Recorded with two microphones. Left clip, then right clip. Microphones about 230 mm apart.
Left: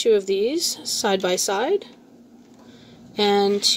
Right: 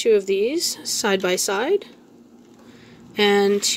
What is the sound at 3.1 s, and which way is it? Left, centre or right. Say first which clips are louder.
Speech: right 2 dB; centre.